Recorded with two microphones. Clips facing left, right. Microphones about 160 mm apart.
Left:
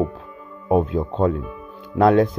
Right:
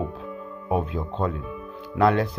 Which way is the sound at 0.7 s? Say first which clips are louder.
Left 7 dB; 45° left (ahead or behind).